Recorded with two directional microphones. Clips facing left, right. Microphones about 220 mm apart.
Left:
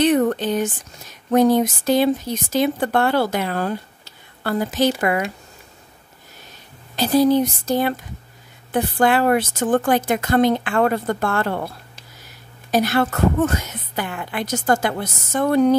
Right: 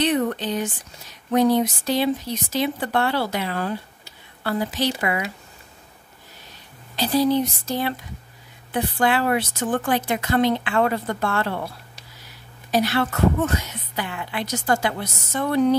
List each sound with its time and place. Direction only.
0.0 s a sound: 45° left (ahead or behind)
1.3 s a woman's voice: 50° left (ahead or behind)
7.0 s a woman's voice: 45° left (ahead or behind)
12.7 s a woman's voice: 45° left (ahead or behind)